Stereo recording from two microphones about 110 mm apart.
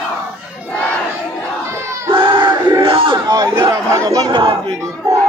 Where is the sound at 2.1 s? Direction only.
50° right (ahead or behind).